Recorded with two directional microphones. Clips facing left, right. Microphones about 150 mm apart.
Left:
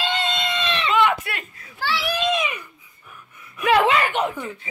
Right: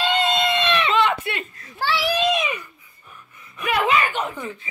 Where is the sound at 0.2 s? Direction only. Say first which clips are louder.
Right 5 dB; 45° right (ahead or behind).